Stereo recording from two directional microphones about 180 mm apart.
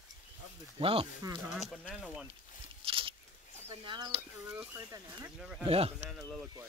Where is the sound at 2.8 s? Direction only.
30° right (ahead or behind).